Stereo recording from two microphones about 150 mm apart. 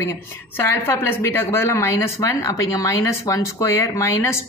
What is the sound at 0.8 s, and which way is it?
A woman's voice, 15° left (ahead or behind).